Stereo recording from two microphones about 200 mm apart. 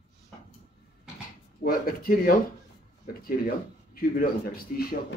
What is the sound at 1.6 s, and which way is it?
Speech, 50° left (ahead or behind).